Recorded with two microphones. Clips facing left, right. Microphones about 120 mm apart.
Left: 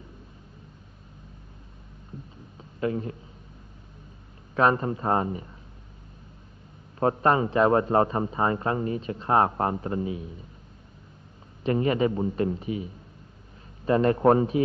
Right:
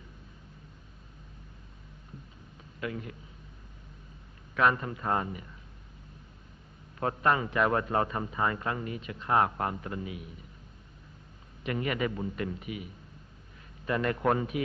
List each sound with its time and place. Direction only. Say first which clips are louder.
2.8 s a man's voice: left 9 dB; 35° left (ahead or behind)
4.6 s a man's voice: left 5 dB; 35° left (ahead or behind)
7.0 s a man's voice: left 6 dB; 35° left (ahead or behind)
11.6 s a man's voice: left 8 dB; 30° left (ahead or behind)